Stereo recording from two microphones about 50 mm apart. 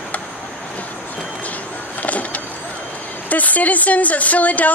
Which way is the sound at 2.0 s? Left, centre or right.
Left.